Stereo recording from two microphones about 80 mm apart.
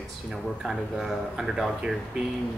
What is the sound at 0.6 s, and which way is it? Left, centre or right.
Speech, centre.